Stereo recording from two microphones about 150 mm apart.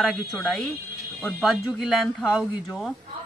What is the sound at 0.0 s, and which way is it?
Speech, 5° left (ahead or behind).